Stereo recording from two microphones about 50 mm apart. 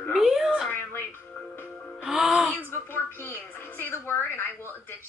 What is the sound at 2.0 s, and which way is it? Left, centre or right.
Music, centre.